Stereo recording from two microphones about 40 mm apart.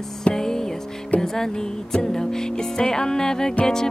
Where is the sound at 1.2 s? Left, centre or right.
Centre.